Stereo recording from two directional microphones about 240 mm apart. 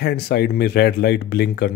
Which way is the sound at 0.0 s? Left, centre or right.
Left.